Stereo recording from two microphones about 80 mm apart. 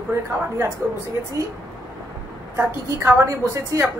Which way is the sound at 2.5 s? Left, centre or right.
Right.